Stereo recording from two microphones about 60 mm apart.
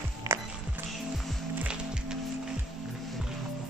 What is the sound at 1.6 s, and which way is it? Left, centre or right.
Music, centre.